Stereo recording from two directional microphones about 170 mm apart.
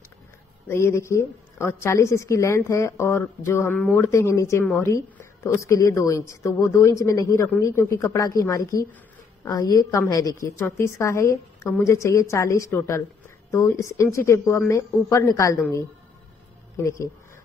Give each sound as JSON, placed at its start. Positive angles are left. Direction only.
{"t": 0.7, "sound": "a woman's voice", "side_deg": 15}
{"t": 16.7, "sound": "a woman's voice", "side_deg": 15}